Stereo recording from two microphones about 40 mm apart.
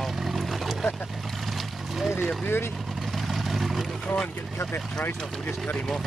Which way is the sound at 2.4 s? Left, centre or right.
Left.